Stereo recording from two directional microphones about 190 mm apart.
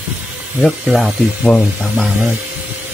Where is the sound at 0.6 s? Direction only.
Centre (ahead or behind).